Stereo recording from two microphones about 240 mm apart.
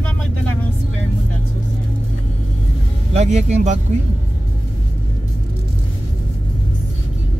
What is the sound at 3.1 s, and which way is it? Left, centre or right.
Speech, right.